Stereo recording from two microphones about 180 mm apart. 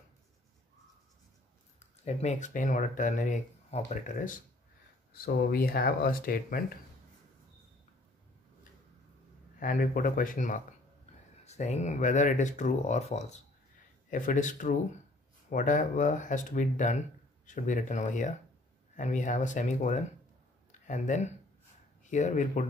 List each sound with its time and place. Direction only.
1.8 s speech: 40° left (ahead or behind)
5.2 s speech: 55° left (ahead or behind)
9.6 s speech: 50° left (ahead or behind)